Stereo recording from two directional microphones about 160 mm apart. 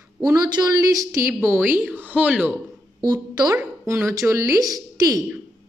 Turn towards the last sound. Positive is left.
turn(degrees=-25)  # may be behind; listen again after turning